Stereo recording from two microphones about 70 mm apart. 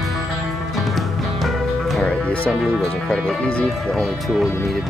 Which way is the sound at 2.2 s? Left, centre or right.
Centre.